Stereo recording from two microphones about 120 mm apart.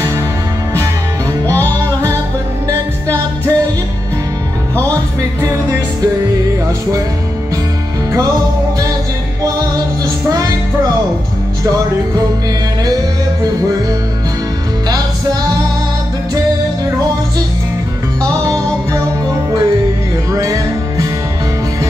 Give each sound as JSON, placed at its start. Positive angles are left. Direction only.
{"t": 1.5, "sound": "music", "side_deg": -25}
{"t": 4.9, "sound": "music", "side_deg": -25}
{"t": 9.4, "sound": "music", "side_deg": -30}
{"t": 11.6, "sound": "music", "side_deg": -30}
{"t": 18.2, "sound": "music", "side_deg": -25}